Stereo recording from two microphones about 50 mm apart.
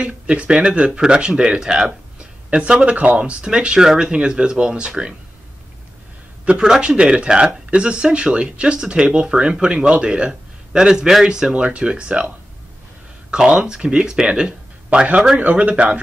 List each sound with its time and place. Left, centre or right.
0.0 s speech: right
2.1 s a sound: centre
3.2 s speech: right
6.4 s a man's voice: right
6.7 s speech: centre